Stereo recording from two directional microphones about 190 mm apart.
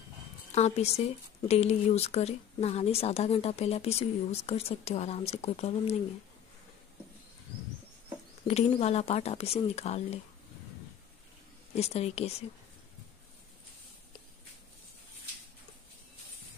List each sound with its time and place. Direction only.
0.5 s speech: 35° left (ahead or behind)
8.5 s speech: 35° left (ahead or behind)
11.7 s speech: 35° left (ahead or behind)